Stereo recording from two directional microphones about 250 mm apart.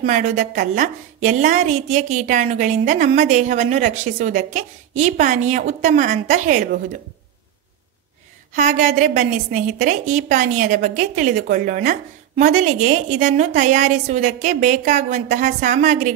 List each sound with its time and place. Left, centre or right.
0.0 s a woman's voice: right
8.5 s a woman's voice: right